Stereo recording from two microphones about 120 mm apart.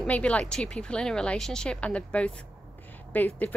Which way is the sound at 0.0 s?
10° left (ahead or behind).